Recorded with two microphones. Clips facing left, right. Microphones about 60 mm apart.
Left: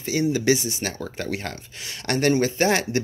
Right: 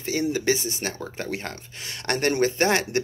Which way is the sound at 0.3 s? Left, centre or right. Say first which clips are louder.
Left 3 dB; right.